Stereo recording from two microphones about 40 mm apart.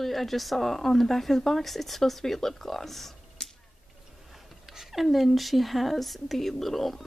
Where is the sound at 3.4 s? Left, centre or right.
Centre.